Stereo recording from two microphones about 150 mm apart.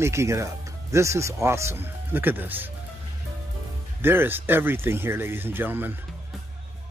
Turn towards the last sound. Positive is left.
turn(degrees=-15)  # may be behind; listen again after turning